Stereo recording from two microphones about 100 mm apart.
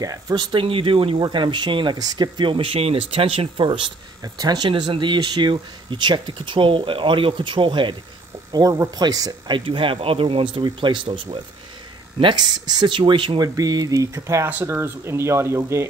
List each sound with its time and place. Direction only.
0.0 s speech: 40° right (ahead or behind); by 1.2 s 65° right (ahead or behind)
1.2 s speech: 50° right (ahead or behind); by 3.6 s 70° right (ahead or behind)
3.6 s speech: 60° right (ahead or behind)
4.2 s speech: 40° right (ahead or behind)
8.5 s speech: 45° right (ahead or behind)
9.7 s speech: 60° right (ahead or behind)
12.2 s speech: 50° right (ahead or behind)
13.6 s speech: 40° right (ahead or behind)